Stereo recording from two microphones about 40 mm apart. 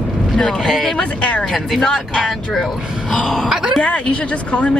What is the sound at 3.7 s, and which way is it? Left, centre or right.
A woman's voice, left.